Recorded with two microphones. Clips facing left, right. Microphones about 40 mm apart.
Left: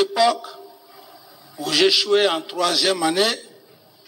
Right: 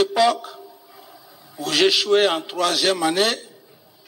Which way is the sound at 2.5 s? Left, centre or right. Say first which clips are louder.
Even; centre.